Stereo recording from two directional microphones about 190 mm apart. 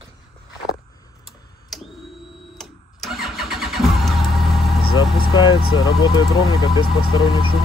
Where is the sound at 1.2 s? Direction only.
Centre (ahead or behind).